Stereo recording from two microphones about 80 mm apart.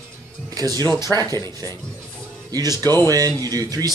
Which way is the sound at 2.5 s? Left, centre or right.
Right.